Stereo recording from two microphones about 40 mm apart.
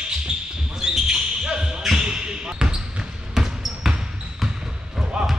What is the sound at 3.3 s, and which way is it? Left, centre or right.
Basketball bounce, centre.